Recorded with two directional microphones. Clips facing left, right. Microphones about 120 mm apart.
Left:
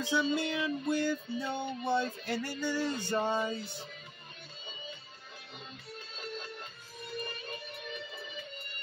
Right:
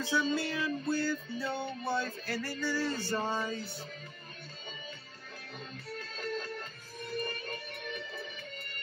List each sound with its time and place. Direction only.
0.0 s music: 20° left (ahead or behind)
5.9 s music: 45° right (ahead or behind)